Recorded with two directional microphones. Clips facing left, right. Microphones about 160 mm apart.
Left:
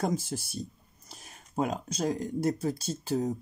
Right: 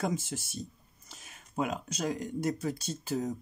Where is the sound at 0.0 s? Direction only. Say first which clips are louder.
Left 3 dB; 35° left (ahead or behind).